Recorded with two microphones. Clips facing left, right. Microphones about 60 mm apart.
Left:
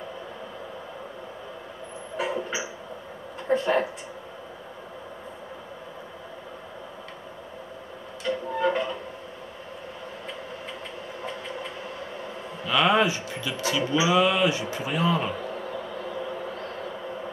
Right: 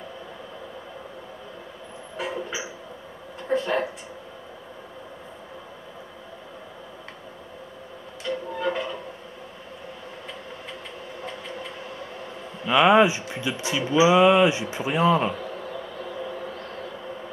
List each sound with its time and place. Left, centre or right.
2.1 s a sound: centre
3.4 s speech: centre
8.3 s music: centre
12.6 s speech: centre
15.3 s insect: centre